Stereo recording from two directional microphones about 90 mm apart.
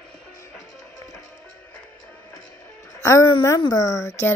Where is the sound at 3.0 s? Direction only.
35° left (ahead or behind).